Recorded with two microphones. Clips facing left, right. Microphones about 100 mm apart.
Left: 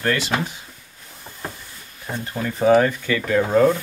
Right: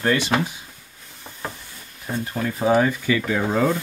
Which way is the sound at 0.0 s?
20° right (ahead or behind).